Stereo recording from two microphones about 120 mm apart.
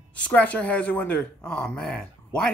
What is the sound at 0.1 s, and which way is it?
Speech, 10° left (ahead or behind).